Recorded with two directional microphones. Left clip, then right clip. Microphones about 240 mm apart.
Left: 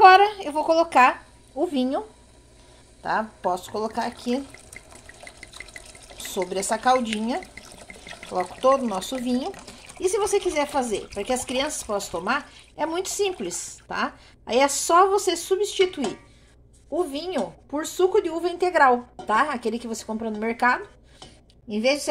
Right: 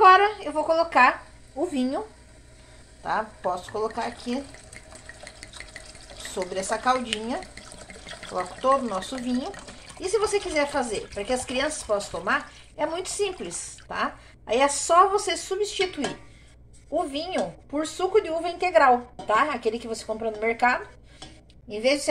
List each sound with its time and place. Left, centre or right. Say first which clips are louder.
0.0 s a sound: left 2 dB; left
3.0 s a woman's voice: left 2 dB; left
6.3 s a woman's voice: left 2 dB; left
8.3 s a woman's voice: left 3 dB; left